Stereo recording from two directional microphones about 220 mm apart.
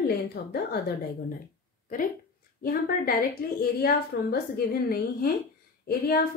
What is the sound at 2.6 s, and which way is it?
A woman's voice, 40° left (ahead or behind).